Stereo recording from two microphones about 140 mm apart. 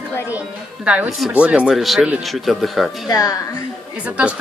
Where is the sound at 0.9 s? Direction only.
5° right (ahead or behind).